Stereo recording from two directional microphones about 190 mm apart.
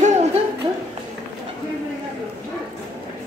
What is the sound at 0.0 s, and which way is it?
Hoot, 35° right (ahead or behind).